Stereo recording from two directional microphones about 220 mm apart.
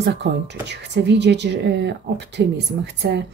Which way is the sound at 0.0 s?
50° right (ahead or behind).